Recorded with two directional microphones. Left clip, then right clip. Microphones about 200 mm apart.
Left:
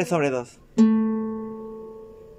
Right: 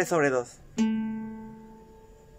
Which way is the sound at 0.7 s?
30° left (ahead or behind).